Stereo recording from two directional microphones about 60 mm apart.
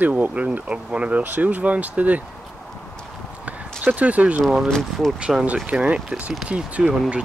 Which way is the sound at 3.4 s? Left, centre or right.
Right.